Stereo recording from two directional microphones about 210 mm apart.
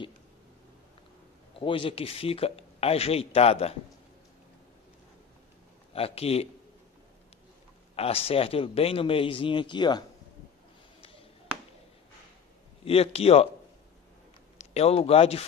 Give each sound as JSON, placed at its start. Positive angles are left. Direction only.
{"t": 1.6, "sound": "speech", "side_deg": 25}
{"t": 5.9, "sound": "speech", "side_deg": 25}
{"t": 7.9, "sound": "speech", "side_deg": 30}
{"t": 12.8, "sound": "speech", "side_deg": 30}
{"t": 14.6, "sound": "speech", "side_deg": 30}